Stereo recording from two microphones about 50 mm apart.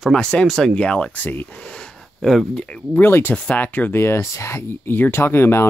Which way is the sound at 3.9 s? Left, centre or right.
Left.